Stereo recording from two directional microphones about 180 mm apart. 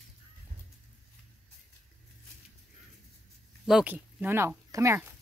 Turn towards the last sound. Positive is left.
turn(degrees=-15)  # may be behind; listen again after turning